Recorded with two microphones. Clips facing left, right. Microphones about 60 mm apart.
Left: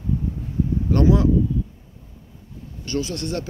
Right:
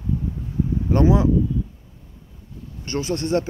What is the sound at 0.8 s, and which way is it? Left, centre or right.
Speech, centre.